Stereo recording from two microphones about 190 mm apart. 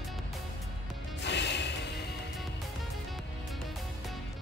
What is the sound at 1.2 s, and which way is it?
Music, 65° left (ahead or behind).